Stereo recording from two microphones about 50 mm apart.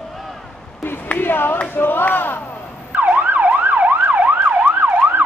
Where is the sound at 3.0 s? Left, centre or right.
Right.